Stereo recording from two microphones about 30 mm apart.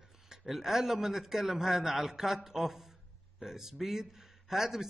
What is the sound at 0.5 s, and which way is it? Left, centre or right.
A man's voice, centre.